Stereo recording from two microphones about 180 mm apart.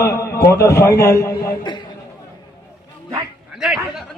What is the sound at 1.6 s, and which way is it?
Chatter, 25° left (ahead or behind).